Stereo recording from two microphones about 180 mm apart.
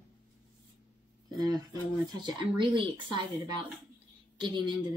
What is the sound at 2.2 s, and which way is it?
Speech, 25° right (ahead or behind).